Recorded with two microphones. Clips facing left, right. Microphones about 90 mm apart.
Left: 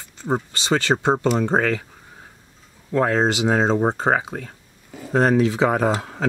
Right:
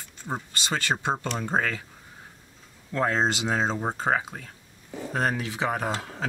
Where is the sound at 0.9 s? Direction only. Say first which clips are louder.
Left 5 dB; 30° left (ahead or behind).